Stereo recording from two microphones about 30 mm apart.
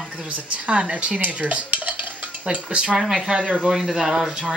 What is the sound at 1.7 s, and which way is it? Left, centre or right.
Stir, right.